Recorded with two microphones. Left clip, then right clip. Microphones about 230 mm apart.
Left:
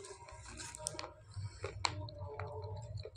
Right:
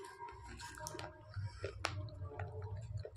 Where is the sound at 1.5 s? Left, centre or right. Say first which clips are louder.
Left 4 dB; right.